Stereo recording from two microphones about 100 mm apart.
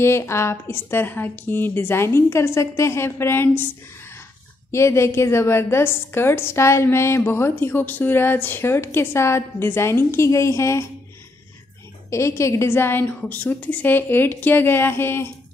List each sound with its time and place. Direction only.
0.0 s a woman's voice: 25° left (ahead or behind)
4.6 s a woman's voice: 30° left (ahead or behind)
12.1 s a woman's voice: 30° left (ahead or behind)